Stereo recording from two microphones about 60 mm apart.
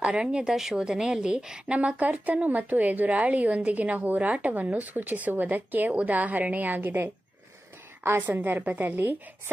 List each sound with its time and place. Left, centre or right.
0.0 s a woman's voice: centre; by 7.1 s right
8.2 s a woman's voice: right